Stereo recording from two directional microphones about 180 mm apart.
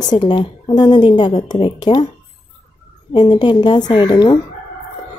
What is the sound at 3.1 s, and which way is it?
A woman's voice, 25° left (ahead or behind).